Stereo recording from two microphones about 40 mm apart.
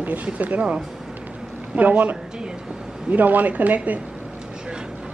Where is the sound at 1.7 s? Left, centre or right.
Right.